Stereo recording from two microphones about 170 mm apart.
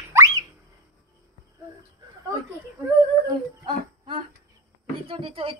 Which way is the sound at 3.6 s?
30° right (ahead or behind).